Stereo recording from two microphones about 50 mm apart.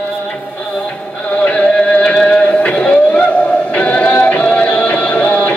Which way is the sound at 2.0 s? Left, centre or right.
Centre.